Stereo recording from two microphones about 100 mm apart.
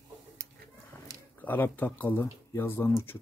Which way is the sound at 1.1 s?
35° right (ahead or behind).